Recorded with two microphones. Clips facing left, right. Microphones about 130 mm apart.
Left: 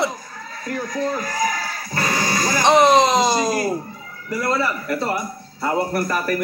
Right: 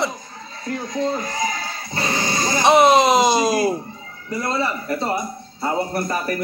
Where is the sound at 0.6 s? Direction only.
25° right (ahead or behind).